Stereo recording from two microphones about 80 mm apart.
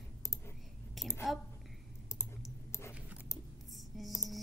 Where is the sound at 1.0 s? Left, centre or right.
Centre.